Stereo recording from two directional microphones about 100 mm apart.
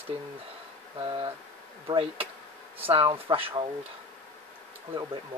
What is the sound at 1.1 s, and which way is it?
Speech, 55° right (ahead or behind).